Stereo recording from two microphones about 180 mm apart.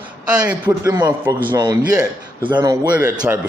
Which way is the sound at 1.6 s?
25° right (ahead or behind).